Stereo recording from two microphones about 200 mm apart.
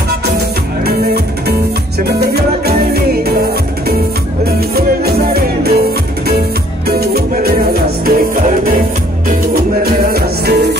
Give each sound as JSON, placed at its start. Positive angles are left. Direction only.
{"t": 0.8, "sound": "music", "side_deg": -50}
{"t": 4.6, "sound": "music", "side_deg": -50}
{"t": 10.0, "sound": "music", "side_deg": -50}